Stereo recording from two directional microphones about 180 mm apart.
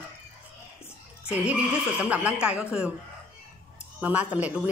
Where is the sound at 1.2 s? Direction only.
5° right (ahead or behind).